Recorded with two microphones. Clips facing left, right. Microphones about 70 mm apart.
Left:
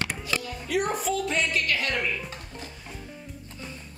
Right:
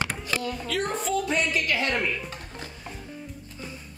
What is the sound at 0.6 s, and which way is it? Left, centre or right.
Music, centre.